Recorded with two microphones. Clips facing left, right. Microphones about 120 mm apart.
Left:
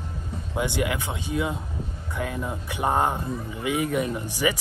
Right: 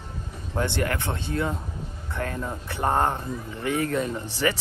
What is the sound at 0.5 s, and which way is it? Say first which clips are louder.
Speech: even; 10° left (ahead or behind).